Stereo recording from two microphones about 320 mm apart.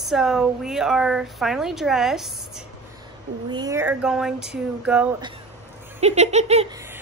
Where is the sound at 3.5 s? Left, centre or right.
Centre.